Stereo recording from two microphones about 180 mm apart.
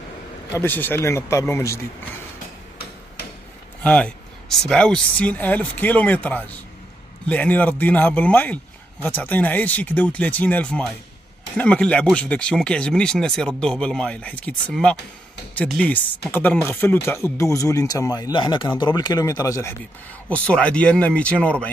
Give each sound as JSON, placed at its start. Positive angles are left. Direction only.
{"t": 0.6, "sound": "speech", "side_deg": 10}
{"t": 3.8, "sound": "speech", "side_deg": 5}
{"t": 20.2, "sound": "speech", "side_deg": 5}